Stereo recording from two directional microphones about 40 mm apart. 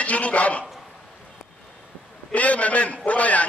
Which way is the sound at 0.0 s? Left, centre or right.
Left.